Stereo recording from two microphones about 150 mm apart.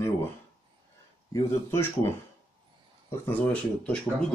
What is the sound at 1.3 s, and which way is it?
Speech, 20° left (ahead or behind).